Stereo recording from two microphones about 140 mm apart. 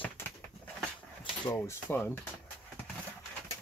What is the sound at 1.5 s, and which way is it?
Speech, 15° left (ahead or behind).